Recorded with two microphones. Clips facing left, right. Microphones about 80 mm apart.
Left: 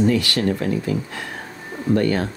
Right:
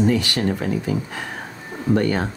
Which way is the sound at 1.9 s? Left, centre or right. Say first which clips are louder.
Left 1 dB; right.